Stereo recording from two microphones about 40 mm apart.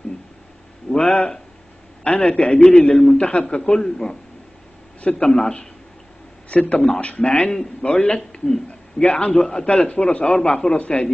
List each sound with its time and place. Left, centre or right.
0.8 s a sound: left
2.0 s a man's voice: left
3.2 s a man's voice: left
3.4 s a man's voice: centre
6.5 s a man's voice: left